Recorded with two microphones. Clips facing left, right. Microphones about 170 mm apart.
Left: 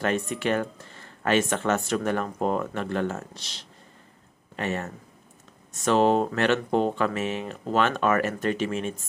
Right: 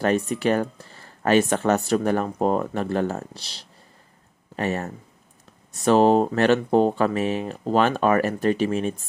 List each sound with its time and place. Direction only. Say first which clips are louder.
0.3 s speech: right 4 dB; 40° right (ahead or behind)